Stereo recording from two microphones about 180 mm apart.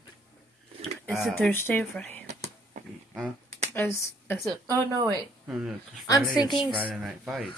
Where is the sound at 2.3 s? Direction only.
40° right (ahead or behind).